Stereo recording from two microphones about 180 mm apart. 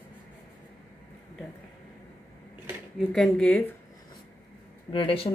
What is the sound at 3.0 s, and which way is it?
Speech, centre (ahead or behind).